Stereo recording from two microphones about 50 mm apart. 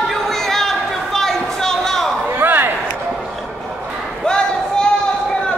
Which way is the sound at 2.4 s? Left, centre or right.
Right.